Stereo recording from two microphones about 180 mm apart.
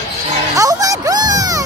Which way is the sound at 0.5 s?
20° right (ahead or behind).